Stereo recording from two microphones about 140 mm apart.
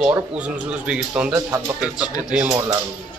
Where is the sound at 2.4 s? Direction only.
20° right (ahead or behind).